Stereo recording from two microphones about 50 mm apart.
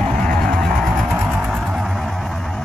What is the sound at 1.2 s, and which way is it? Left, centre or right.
Vehicle, centre.